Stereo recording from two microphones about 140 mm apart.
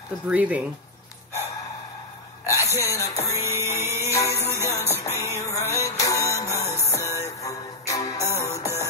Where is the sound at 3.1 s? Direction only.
20° left (ahead or behind).